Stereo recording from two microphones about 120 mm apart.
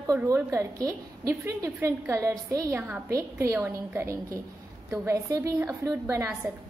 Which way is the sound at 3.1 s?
25° right (ahead or behind).